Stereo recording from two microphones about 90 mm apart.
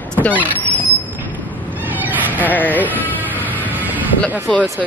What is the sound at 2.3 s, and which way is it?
Speech, 20° left (ahead or behind).